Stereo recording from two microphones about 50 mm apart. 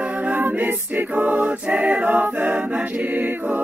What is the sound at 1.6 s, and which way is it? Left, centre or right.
A capella, right.